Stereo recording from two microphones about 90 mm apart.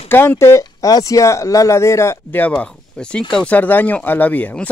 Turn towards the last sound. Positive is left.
turn(degrees=15)  # may be behind; listen again after turning